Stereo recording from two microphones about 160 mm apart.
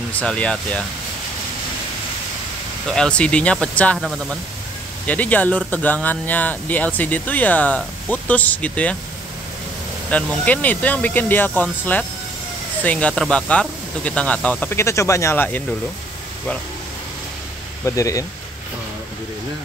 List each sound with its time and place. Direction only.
0.1 s speech: 5° left (ahead or behind)
2.9 s speech: 5° left (ahead or behind)
10.1 s speech: 10° left (ahead or behind)
17.8 s speech: 20° left (ahead or behind)